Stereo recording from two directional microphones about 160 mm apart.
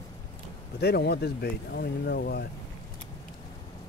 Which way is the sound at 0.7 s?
90° left.